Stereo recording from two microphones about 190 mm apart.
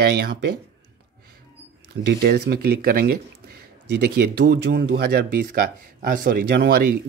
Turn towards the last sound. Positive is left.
turn(degrees=-55)  # may be behind; listen again after turning